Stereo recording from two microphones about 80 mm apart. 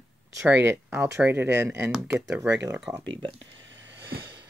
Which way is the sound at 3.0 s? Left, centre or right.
Right.